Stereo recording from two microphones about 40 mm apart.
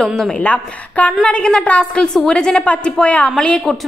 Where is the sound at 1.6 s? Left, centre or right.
Left.